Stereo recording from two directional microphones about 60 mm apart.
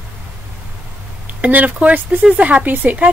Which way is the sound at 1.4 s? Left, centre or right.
Right.